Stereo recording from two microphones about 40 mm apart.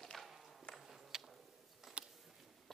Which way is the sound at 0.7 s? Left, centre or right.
Centre.